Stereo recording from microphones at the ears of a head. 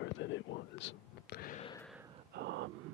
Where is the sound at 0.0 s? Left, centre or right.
Left.